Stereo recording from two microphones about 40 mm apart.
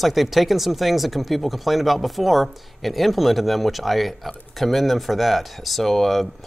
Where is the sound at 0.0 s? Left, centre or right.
Centre.